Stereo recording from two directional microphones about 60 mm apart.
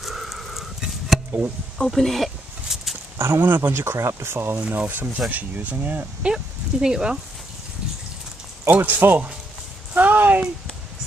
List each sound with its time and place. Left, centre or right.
0.0 s a sound: centre
3.2 s speech: right
3.4 s speech: right
3.9 s speech: right
4.6 s speech: right
6.2 s speech: centre
8.6 s speech: right